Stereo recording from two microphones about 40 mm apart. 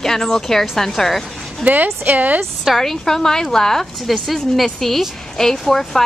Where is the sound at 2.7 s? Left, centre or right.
Centre.